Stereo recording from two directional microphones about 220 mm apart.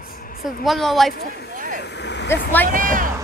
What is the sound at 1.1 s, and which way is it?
Speech, 45° left (ahead or behind).